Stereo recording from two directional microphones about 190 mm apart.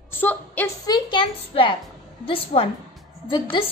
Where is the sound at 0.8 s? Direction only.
25° left (ahead or behind).